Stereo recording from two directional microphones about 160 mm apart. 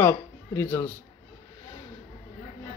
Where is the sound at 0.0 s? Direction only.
15° left (ahead or behind).